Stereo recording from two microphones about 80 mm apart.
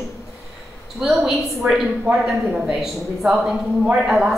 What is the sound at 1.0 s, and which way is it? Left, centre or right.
A man's voice, centre.